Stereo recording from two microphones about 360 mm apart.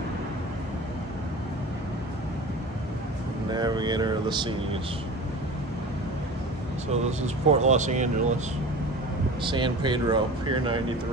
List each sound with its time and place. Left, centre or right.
3.5 s speech: centre
7.1 s speech: centre
9.4 s speech: centre